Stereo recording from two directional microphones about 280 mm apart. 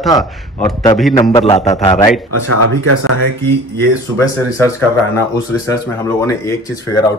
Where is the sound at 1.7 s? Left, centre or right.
Centre.